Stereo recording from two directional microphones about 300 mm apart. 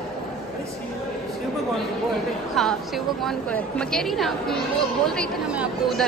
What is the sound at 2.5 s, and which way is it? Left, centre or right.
A woman's voice, centre.